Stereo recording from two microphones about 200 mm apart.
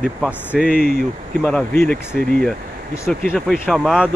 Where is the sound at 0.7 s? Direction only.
50° left (ahead or behind).